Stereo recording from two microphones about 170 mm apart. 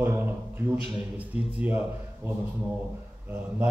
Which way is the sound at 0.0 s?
10° right (ahead or behind).